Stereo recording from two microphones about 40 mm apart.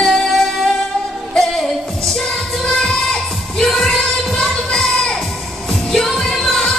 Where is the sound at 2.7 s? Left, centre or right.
Left.